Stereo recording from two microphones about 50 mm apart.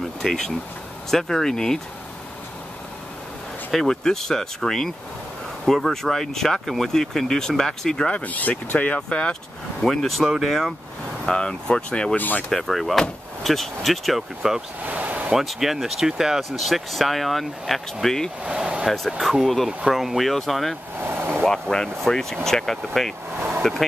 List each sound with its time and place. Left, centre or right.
0.2 s speech: centre
3.7 s speech: centre
8.1 s speech: left; by 10.7 s centre
11.2 s speech: centre
12.2 s speech: left
12.4 s speech: centre
14.8 s a sound: right
15.3 s speech: centre
18.4 s speech: centre
18.9 s speech: centre
21.0 s vehicle: right
21.5 s speech: centre